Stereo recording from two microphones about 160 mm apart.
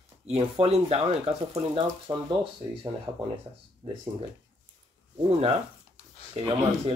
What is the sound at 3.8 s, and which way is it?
Speech, 35° right (ahead or behind).